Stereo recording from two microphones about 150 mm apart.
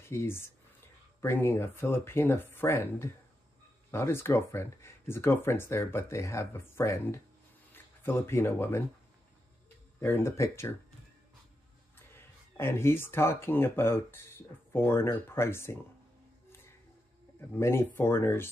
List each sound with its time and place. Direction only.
0.1 s speech: 15° left (ahead or behind)
9.9 s speech: 20° left (ahead or behind)
12.1 s speech: 15° left (ahead or behind)
17.6 s speech: 15° left (ahead or behind)